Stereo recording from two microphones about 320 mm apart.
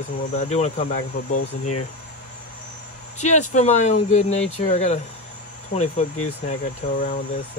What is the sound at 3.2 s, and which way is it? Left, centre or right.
Speech, left.